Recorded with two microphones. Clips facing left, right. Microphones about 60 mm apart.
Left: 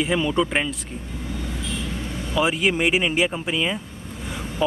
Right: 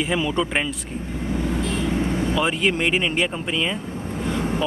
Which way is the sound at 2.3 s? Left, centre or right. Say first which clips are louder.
Left 4 dB; centre.